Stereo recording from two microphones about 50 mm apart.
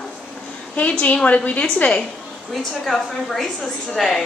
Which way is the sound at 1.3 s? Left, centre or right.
Left.